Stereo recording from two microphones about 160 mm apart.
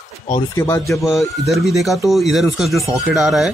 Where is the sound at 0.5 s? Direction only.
15° left (ahead or behind).